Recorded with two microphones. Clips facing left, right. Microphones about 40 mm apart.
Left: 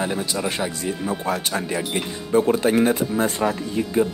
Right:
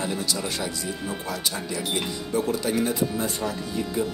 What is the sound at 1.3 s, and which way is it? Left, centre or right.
Speech, left.